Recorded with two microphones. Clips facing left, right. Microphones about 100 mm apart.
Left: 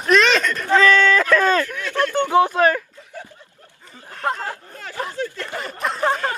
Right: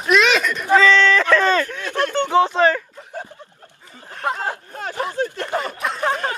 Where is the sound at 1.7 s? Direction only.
20° right (ahead or behind).